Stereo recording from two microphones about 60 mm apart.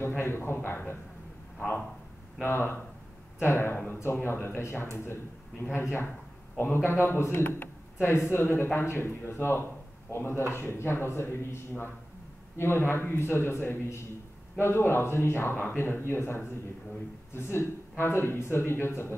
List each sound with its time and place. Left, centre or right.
0.2 s speech: left
2.4 s speech: left
4.0 s speech: left